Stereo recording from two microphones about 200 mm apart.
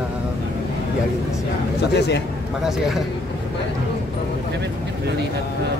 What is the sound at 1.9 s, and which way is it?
Speech, 55° left (ahead or behind).